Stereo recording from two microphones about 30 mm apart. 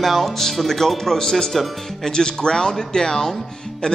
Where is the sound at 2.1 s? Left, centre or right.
Left.